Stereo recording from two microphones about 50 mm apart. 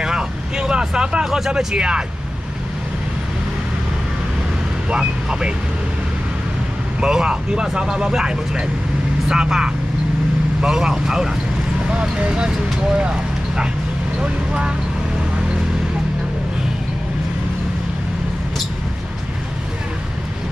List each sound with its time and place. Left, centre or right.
0.0 s vehicle: centre
4.8 s speech: centre
7.0 s speech: centre